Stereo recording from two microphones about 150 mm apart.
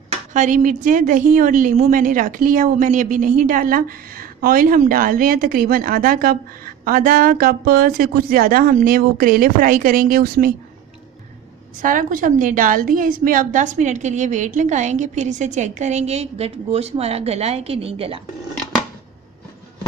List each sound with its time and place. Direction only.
0.3 s a woman's voice: 60° right (ahead or behind); by 10.5 s 85° right
11.8 s a woman's voice: 65° right (ahead or behind); by 18.2 s 40° right (ahead or behind)